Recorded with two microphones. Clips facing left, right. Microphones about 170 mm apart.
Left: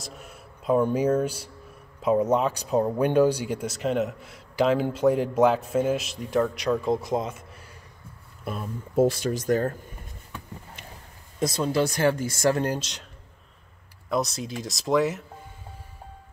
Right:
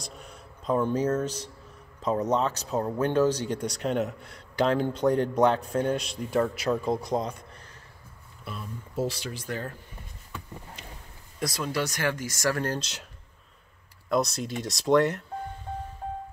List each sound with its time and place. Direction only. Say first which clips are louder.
0.0 s speech: left 2 dB; 5° left (ahead or behind)
8.5 s speech: left 6 dB; 50° left (ahead or behind)
11.3 s speech: left 6 dB; 25° left (ahead or behind)
14.0 s speech: right 1 dB; centre (ahead or behind)